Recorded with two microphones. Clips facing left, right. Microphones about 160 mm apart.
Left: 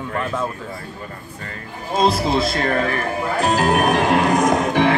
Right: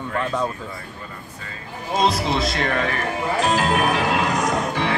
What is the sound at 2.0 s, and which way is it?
Music, 50° left (ahead or behind).